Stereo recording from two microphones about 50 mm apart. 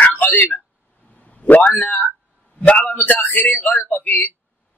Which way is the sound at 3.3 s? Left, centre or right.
Left.